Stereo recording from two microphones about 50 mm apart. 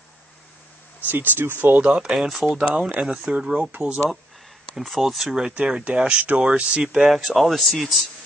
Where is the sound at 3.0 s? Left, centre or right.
Right.